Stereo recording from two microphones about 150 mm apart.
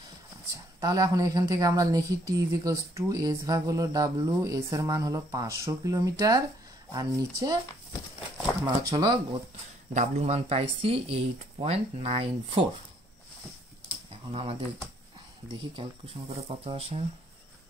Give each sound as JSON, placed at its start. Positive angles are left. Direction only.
{"t": 0.7, "sound": "speech", "side_deg": -25}
{"t": 8.6, "sound": "speech", "side_deg": -30}
{"t": 9.9, "sound": "a man's voice", "side_deg": -45}
{"t": 14.3, "sound": "speech", "side_deg": -35}
{"t": 16.4, "sound": "a man's voice", "side_deg": -40}